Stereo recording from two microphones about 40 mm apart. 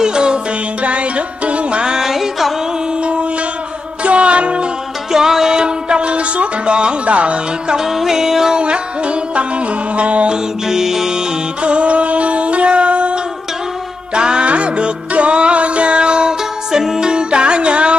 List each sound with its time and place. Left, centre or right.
0.0 s music: right
0.8 s music: right
2.0 s music: centre
4.0 s music: right
5.1 s music: centre; by 7.7 s right
7.7 s music: centre
8.5 s music: right
10.3 s music: centre
11.6 s music: right; by 17.1 s centre
17.1 s music: right